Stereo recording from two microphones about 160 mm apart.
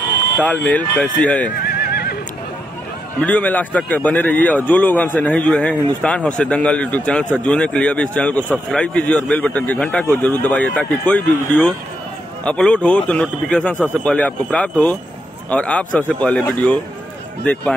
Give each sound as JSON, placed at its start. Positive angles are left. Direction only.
{"t": 0.4, "sound": "a man's voice", "side_deg": 10}
{"t": 1.6, "sound": "neigh", "side_deg": 75}
{"t": 3.2, "sound": "a man's voice", "side_deg": 10}